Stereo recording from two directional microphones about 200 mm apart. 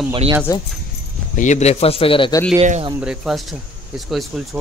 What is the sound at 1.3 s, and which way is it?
A man's voice, 35° left (ahead or behind).